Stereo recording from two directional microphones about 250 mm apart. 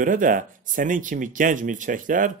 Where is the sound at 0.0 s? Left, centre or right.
Right.